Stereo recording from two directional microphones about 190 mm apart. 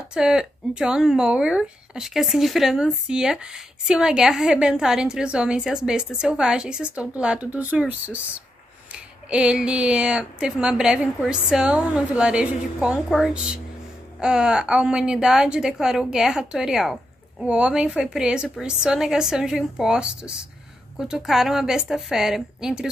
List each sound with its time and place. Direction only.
0.1 s a woman's voice: 5° right (ahead or behind)
9.3 s a woman's voice: 5° right (ahead or behind)